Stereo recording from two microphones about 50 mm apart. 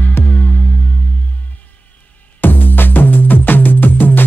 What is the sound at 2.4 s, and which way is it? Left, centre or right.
Music, left.